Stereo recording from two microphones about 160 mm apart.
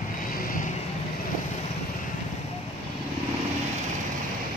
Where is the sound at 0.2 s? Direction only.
60° left (ahead or behind).